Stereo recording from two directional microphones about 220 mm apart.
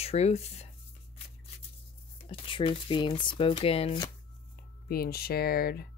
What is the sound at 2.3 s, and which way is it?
Speech, 25° left (ahead or behind).